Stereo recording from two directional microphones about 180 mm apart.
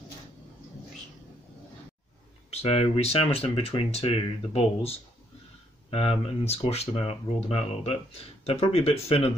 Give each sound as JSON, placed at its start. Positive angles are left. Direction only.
{"t": 2.5, "sound": "speech", "side_deg": 35}